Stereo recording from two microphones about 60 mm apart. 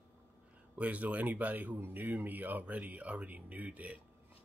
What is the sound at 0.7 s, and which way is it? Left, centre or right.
Speech, right.